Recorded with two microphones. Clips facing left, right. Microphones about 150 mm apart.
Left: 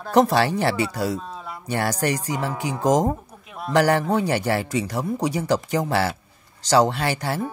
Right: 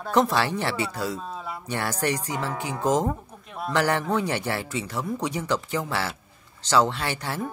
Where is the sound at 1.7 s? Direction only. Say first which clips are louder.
Left 4 dB; 40° left (ahead or behind).